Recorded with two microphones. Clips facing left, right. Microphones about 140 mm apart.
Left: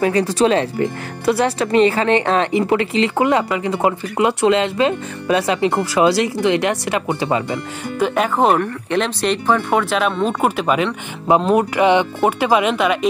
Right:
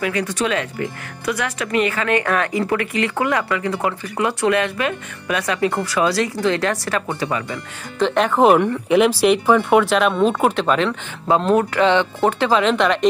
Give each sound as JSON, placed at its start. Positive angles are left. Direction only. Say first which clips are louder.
{"t": 0.0, "sound": "speech", "louder": "left 6 dB", "side_deg": 35}
{"t": 8.0, "sound": "speech", "louder": "right 1 dB", "side_deg": 5}